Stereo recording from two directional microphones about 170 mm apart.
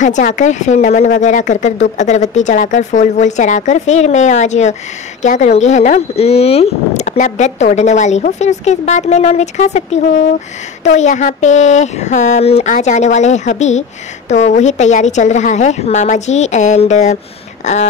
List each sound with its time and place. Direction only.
0.0 s speech: 45° left (ahead or behind)